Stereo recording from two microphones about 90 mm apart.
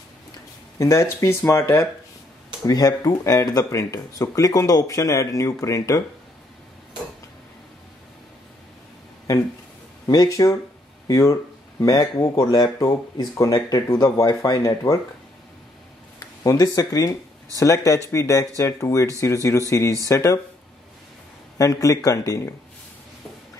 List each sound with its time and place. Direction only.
0.7 s speech: 35° left (ahead or behind)
2.6 s speech: 45° left (ahead or behind)
10.0 s speech: 40° left (ahead or behind)
16.2 s speech: 35° left (ahead or behind)
21.5 s speech: 40° left (ahead or behind)